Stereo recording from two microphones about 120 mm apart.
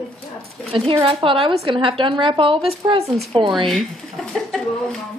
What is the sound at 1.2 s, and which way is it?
A woman's voice, 45° right (ahead or behind).